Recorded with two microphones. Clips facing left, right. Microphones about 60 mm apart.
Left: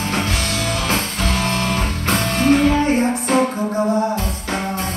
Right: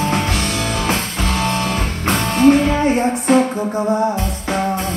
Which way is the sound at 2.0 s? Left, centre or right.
Right.